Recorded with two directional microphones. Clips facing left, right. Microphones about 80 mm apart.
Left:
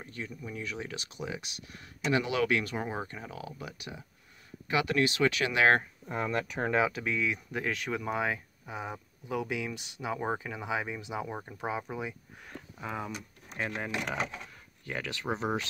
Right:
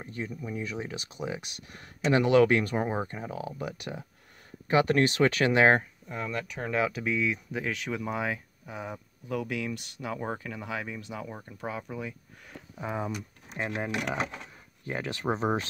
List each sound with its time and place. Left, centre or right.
0.0 s speech: right
4.6 s speech: right
6.0 s speech: left
6.9 s speech: centre
12.8 s speech: centre
14.9 s speech: right